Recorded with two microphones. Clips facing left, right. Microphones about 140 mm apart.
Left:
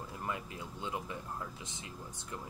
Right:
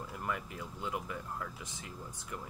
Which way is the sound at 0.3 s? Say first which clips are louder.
Right 2 dB; 20° left (ahead or behind).